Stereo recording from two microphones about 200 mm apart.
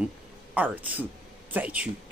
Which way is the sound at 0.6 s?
5° right (ahead or behind).